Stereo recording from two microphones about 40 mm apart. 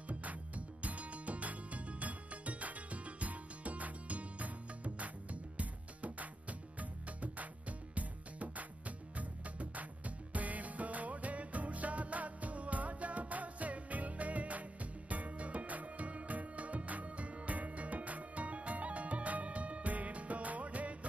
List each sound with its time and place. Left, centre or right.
0.1 s music: right